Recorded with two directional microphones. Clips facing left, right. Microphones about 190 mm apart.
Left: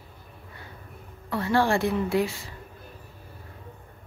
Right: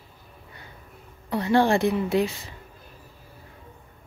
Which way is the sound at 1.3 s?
20° right (ahead or behind).